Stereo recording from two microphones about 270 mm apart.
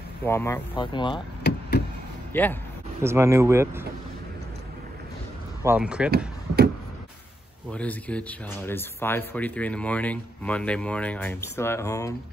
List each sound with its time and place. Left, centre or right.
0.2 s speech: centre
1.5 s knock: left
2.3 s speech: centre
3.0 s speech: centre
5.6 s speech: centre
6.1 s chop: right
7.7 s speech: centre